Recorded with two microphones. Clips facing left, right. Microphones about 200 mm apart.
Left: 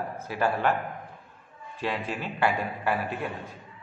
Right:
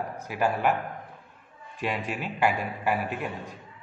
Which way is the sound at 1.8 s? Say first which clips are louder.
Even; 15° right (ahead or behind).